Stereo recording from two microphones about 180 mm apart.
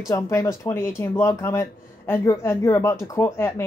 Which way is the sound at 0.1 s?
20° left (ahead or behind).